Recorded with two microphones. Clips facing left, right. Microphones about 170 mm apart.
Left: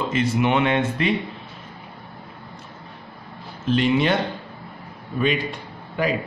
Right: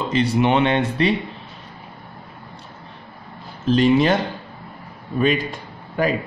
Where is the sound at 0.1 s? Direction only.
35° right (ahead or behind).